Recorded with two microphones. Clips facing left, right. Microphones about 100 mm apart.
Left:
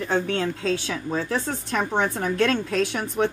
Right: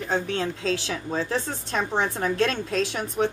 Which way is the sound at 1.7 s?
50° left (ahead or behind).